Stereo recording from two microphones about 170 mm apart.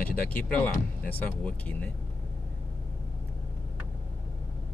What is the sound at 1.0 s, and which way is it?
Speech, 10° left (ahead or behind).